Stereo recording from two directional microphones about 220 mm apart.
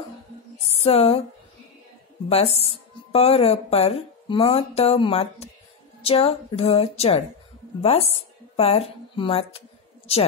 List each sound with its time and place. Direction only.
0.7 s music: 25° left (ahead or behind)
2.2 s a woman's voice: 30° left (ahead or behind)